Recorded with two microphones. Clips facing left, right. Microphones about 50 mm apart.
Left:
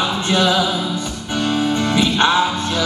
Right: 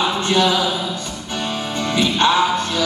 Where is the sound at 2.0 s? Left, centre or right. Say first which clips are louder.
Right 1 dB; centre.